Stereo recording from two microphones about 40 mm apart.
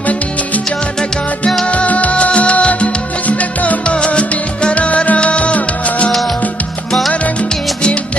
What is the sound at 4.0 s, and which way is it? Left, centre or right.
Music, left.